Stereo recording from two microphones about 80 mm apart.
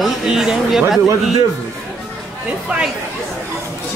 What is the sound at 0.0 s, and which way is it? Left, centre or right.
Speech, centre.